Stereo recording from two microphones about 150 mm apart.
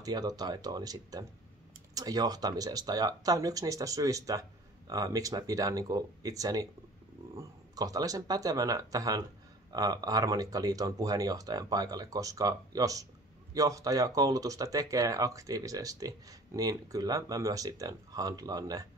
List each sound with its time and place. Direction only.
0.0 s speech: 25° right (ahead or behind)